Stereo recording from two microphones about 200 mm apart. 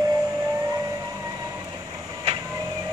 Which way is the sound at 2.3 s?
35° right (ahead or behind).